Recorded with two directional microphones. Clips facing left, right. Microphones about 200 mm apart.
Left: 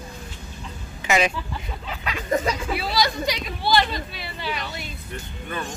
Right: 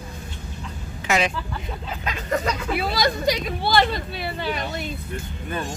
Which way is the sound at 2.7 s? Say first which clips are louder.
Right 1 dB; 50° right (ahead or behind).